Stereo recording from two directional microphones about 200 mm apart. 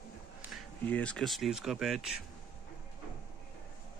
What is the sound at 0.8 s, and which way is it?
Speech, 5° left (ahead or behind).